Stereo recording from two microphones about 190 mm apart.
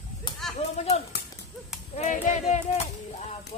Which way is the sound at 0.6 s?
35° left (ahead or behind).